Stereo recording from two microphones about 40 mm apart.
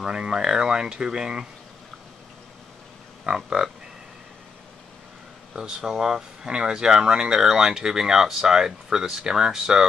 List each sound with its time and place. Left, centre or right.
0.0 s speech: centre
3.4 s speech: right
5.6 s speech: centre